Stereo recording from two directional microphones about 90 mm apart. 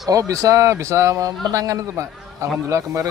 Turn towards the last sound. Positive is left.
turn(degrees=-35)  # may be behind; listen again after turning